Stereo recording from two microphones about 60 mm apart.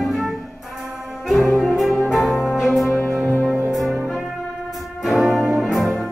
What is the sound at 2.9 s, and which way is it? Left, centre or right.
Music, left.